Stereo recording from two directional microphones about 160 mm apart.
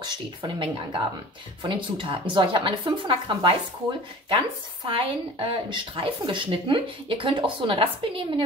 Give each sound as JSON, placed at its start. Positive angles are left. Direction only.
{"t": 0.0, "sound": "speech", "side_deg": -30}